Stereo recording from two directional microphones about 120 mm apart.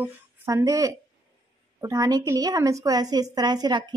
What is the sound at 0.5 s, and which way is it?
A woman's voice, 30° right (ahead or behind).